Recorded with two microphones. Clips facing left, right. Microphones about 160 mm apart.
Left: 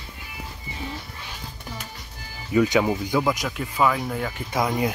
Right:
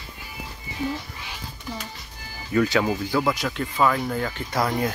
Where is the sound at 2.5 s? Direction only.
15° left (ahead or behind).